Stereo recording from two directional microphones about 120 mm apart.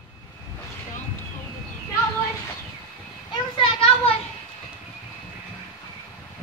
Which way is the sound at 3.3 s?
45° left (ahead or behind).